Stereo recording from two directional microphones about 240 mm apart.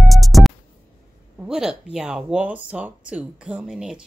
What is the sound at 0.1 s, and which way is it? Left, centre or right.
Music, centre.